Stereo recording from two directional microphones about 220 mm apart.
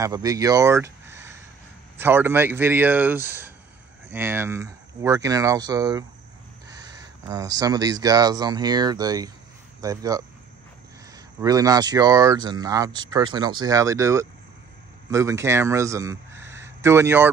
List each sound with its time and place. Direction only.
0.0 s speech: 15° right (ahead or behind)
11.4 s speech: 15° right (ahead or behind)